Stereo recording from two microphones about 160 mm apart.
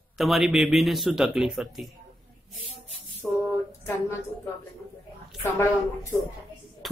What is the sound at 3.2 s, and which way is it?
Speech, centre (ahead or behind).